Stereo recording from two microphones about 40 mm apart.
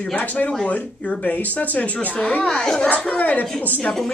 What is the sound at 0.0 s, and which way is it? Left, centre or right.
Speech, left.